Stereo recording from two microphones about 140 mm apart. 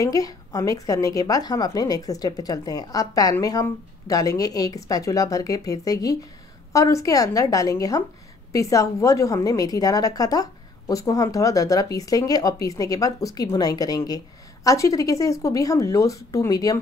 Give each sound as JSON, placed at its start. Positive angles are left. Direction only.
{"t": 0.0, "sound": "a woman's voice", "side_deg": 25}